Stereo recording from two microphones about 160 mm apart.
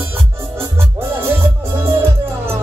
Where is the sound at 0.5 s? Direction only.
15° right (ahead or behind).